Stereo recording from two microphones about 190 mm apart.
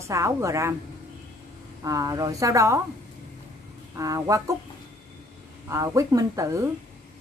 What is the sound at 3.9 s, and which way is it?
Speech, 15° right (ahead or behind).